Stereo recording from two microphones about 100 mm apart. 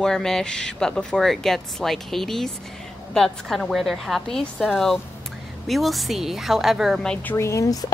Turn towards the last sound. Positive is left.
turn(degrees=35)  # may be behind; listen again after turning